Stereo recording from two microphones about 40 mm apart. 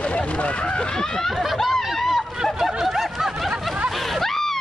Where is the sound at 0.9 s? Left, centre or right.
Centre.